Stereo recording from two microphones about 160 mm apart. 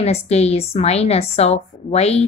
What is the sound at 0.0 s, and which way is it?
A woman's voice, 40° left (ahead or behind).